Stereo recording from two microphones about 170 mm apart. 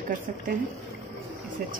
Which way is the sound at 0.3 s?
50° right (ahead or behind).